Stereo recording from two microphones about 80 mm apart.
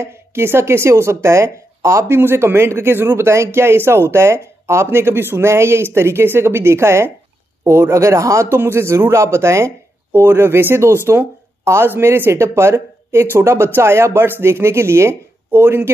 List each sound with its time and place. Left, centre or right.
0.0 s speech: right